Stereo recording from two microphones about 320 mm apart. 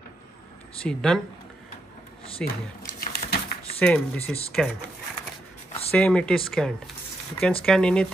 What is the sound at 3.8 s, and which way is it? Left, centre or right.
Speech, centre.